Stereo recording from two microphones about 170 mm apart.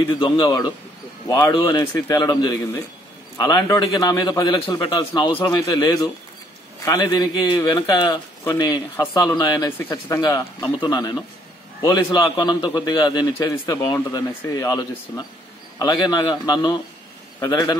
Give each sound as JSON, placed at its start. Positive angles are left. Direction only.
{"t": 0.1, "sound": "a man's voice", "side_deg": 25}
{"t": 10.2, "sound": "a man's voice", "side_deg": 25}